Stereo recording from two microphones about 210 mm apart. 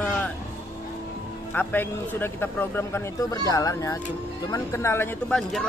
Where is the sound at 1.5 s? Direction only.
10° left (ahead or behind).